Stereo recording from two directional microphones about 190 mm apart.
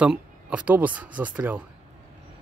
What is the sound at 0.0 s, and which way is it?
Speech, 5° right (ahead or behind).